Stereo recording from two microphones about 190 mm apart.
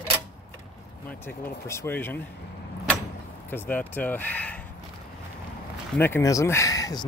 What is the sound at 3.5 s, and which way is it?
Speech, 10° left (ahead or behind).